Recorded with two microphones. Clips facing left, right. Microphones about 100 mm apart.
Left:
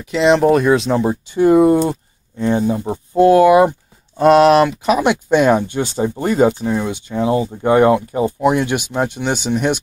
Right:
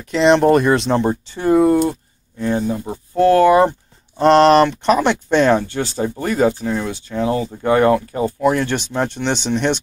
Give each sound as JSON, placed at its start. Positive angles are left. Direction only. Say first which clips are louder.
{"t": 0.0, "sound": "speech", "louder": "even", "side_deg": 0}
{"t": 1.3, "sound": "speech", "louder": "left 3 dB", "side_deg": 15}